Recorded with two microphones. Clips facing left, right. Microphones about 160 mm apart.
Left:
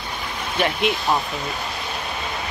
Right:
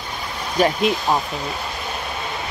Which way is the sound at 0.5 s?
40° right (ahead or behind).